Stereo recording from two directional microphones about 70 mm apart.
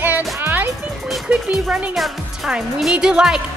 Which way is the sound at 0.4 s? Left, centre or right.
Right.